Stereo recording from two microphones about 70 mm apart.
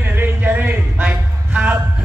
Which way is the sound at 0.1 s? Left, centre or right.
Right.